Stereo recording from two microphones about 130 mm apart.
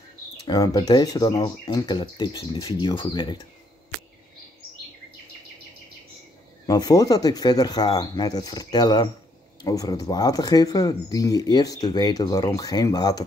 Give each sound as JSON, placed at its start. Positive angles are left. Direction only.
{"t": 0.5, "sound": "speech", "side_deg": 30}
{"t": 6.6, "sound": "speech", "side_deg": 30}